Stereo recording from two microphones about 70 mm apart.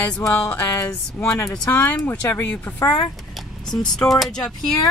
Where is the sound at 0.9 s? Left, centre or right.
Left.